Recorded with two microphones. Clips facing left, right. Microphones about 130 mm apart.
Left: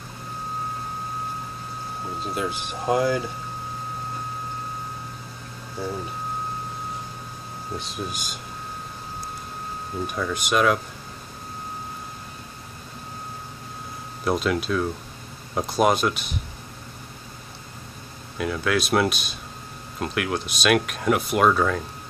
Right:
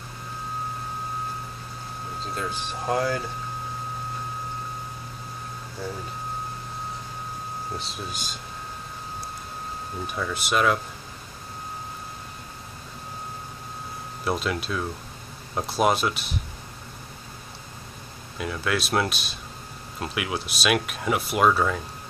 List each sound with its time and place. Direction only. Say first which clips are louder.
2.2 s speech: left 3 dB; 10° left (ahead or behind)
7.8 s speech: left 3 dB; 50° left (ahead or behind)
10.0 s speech: left 2 dB; centre (ahead or behind)
14.2 s speech: left 4 dB; centre (ahead or behind)
18.4 s speech: left 3 dB; centre (ahead or behind)